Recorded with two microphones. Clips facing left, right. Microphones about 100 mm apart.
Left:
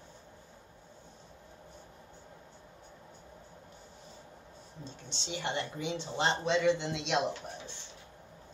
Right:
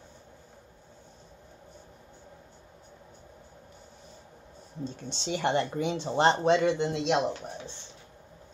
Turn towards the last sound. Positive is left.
turn(degrees=-45)  # may be behind; listen again after turning